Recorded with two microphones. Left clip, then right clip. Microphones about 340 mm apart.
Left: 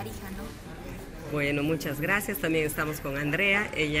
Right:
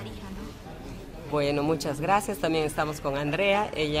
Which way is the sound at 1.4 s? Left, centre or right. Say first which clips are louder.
Right 2 dB; centre.